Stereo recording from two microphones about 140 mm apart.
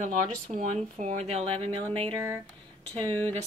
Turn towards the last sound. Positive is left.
turn(degrees=15)  # may be behind; listen again after turning